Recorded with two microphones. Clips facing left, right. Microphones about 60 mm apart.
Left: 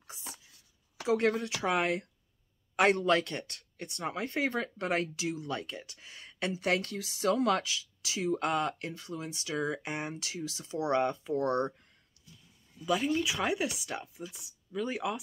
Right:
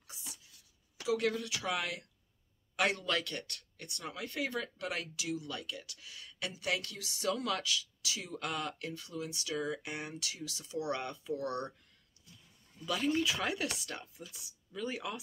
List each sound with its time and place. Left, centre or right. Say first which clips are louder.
0.0 s a sound: left 5 dB; left
1.0 s speech: left 5 dB; left
12.8 s speech: left 3 dB; centre